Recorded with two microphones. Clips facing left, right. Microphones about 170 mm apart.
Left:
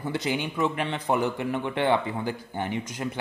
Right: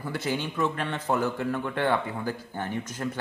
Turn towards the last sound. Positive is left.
turn(degrees=15)  # may be behind; listen again after turning